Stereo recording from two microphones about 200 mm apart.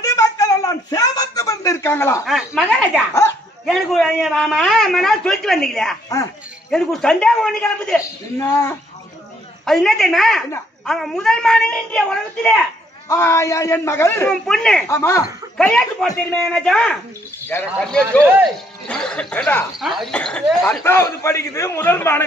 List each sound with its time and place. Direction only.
0.0 s a sound: 15° left (ahead or behind)
2.2 s a man's voice: centre (ahead or behind)
9.7 s a man's voice: centre (ahead or behind)
14.3 s a man's voice: centre (ahead or behind)
14.9 s a man's voice: 15° left (ahead or behind)
15.5 s a man's voice: centre (ahead or behind)